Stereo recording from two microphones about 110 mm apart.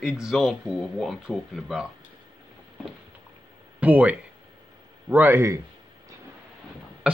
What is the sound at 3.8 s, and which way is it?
A man's voice, 15° right (ahead or behind).